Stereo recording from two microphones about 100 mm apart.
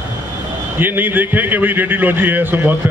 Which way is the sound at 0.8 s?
20° right (ahead or behind).